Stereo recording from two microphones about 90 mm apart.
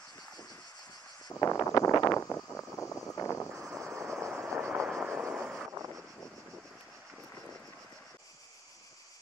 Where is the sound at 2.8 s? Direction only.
30° left (ahead or behind).